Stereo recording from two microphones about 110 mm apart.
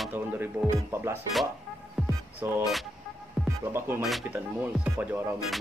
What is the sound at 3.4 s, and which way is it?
Music, centre (ahead or behind).